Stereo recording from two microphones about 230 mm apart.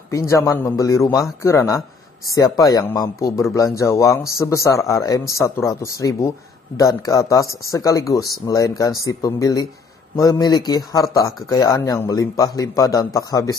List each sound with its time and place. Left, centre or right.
0.1 s speech: centre